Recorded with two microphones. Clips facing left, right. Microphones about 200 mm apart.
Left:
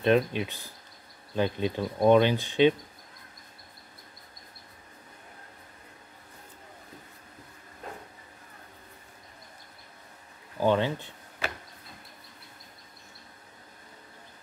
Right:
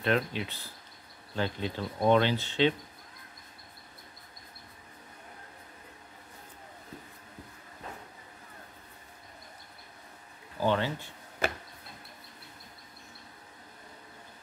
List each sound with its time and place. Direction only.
0.0 s speech: 20° left (ahead or behind)
10.6 s speech: 15° left (ahead or behind)